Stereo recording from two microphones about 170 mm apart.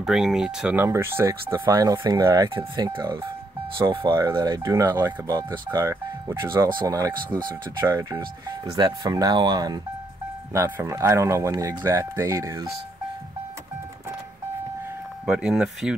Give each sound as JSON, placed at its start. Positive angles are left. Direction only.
{"t": 0.0, "sound": "speech", "side_deg": -5}
{"t": 4.1, "sound": "speech", "side_deg": -20}
{"t": 15.2, "sound": "speech", "side_deg": -5}